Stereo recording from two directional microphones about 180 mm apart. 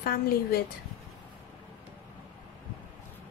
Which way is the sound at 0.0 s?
55° left (ahead or behind).